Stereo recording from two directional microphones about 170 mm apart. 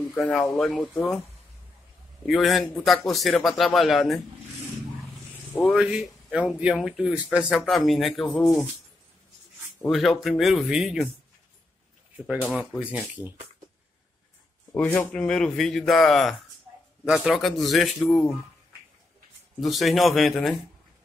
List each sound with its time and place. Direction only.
0.1 s speech: 5° left (ahead or behind)
2.2 s speech: centre (ahead or behind)
5.7 s speech: 5° right (ahead or behind)
9.8 s speech: centre (ahead or behind)
12.5 s speech: 10° right (ahead or behind)
14.7 s speech: 10° left (ahead or behind)
16.7 s a sound: 15° right (ahead or behind)
17.0 s speech: 5° right (ahead or behind)
19.6 s speech: centre (ahead or behind)